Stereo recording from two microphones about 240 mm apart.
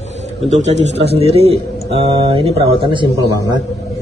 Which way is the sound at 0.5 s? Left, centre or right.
Right.